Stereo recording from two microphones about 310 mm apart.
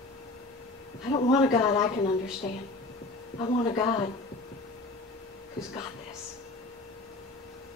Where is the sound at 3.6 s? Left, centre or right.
Centre.